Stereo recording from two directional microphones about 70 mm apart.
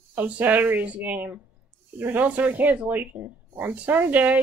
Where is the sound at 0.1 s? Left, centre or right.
Right.